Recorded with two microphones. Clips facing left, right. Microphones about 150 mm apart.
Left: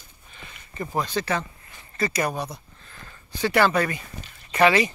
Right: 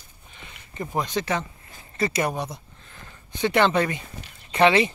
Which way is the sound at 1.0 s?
20° right (ahead or behind).